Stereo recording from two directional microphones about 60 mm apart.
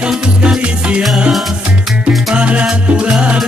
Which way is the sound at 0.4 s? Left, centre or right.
Centre.